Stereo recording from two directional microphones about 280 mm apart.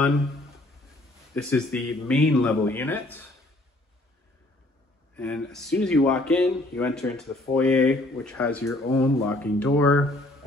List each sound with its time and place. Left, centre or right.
1.3 s speech: centre
5.1 s speech: centre